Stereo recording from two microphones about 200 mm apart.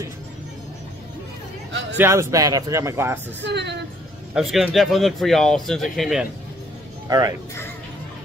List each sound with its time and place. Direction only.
2.0 s speech: 15° right (ahead or behind)
3.4 s speech: 60° right (ahead or behind)
4.3 s speech: centre (ahead or behind)
7.1 s speech: 15° right (ahead or behind)